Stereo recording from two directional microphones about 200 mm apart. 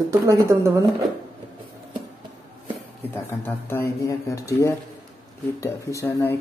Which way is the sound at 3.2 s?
10° left (ahead or behind).